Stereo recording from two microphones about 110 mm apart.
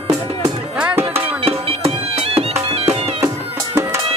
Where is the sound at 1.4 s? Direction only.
65° right (ahead or behind).